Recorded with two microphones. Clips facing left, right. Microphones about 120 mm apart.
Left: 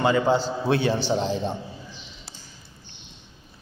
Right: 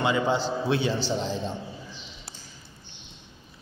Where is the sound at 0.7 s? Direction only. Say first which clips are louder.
Left 5 dB; 55° left (ahead or behind).